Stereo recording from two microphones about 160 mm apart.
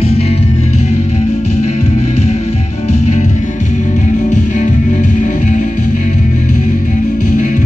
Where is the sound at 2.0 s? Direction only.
45° left (ahead or behind).